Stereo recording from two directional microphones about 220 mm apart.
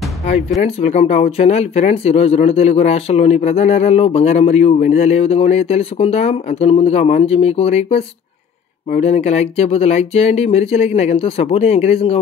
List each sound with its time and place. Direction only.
0.6 s speech: 30° left (ahead or behind)